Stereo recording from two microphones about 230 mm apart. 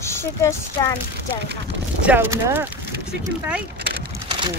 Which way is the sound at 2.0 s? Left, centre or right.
Centre.